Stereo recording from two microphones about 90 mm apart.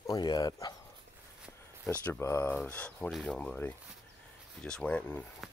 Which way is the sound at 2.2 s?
30° left (ahead or behind).